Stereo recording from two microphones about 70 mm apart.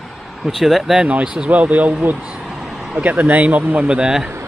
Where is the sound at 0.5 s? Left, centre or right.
Centre.